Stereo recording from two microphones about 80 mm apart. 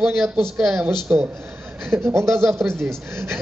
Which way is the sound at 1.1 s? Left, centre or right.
Right.